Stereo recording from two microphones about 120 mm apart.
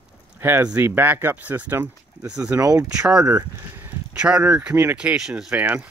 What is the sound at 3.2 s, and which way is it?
Speech, 15° right (ahead or behind).